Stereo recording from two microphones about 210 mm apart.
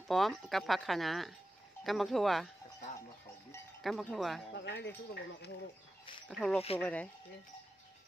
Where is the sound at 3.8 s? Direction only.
Centre (ahead or behind).